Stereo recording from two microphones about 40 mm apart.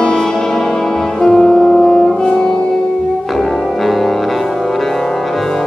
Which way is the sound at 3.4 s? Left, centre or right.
Centre.